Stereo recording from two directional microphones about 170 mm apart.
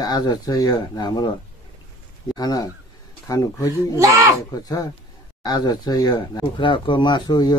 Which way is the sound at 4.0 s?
20° right (ahead or behind).